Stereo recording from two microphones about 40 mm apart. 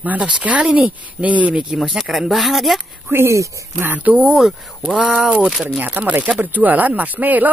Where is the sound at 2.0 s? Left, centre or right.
Centre.